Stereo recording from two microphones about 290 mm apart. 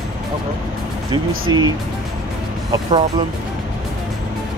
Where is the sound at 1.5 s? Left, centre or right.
Centre.